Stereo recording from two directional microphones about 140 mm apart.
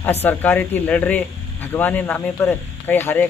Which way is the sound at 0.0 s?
15° left (ahead or behind).